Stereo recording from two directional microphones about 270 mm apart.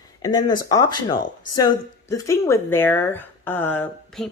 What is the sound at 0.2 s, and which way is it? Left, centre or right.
Speech, centre.